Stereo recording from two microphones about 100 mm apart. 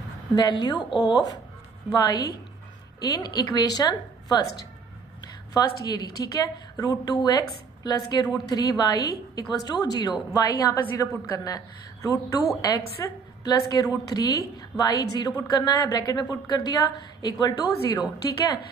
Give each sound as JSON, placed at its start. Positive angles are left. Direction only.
{"t": 0.4, "sound": "a woman's voice", "side_deg": 45}